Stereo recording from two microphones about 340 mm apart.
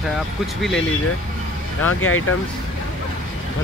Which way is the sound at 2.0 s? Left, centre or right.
Left.